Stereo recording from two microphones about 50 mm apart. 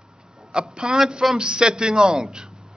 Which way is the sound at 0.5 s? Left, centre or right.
Centre.